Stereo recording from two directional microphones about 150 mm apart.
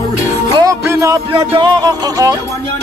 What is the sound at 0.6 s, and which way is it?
Music, 20° right (ahead or behind).